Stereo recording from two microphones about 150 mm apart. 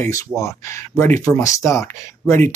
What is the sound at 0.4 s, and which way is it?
Speech, 20° left (ahead or behind).